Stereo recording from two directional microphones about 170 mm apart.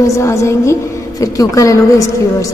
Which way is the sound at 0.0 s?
15° left (ahead or behind).